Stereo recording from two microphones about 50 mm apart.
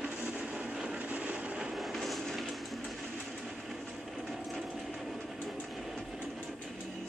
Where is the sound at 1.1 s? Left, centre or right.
Right.